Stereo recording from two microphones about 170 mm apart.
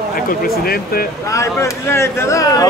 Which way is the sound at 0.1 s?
60° left (ahead or behind).